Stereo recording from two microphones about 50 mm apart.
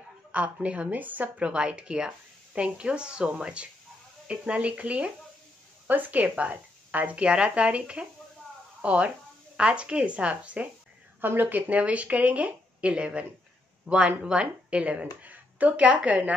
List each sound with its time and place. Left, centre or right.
0.3 s speech: right
5.9 s a woman's voice: right
6.2 s speech: right
6.5 s speech: right
11.1 s speech: right